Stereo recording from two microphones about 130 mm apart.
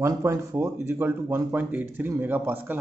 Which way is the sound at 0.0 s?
25° right (ahead or behind).